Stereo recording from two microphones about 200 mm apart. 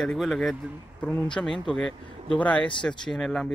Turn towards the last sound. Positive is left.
turn(degrees=0)  # may be behind; listen again after turning